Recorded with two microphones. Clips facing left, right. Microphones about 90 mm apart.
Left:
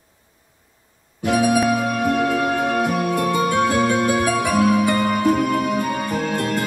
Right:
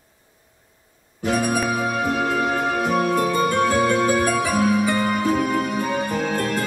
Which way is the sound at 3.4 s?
55° left (ahead or behind).